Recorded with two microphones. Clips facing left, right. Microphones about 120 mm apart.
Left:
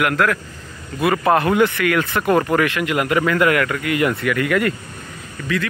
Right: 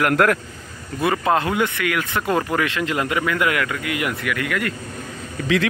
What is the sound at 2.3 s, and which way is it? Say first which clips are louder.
Speech: left 5 dB; 20° left (ahead or behind).